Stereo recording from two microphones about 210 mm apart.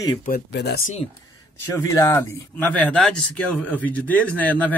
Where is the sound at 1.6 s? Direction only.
15° left (ahead or behind).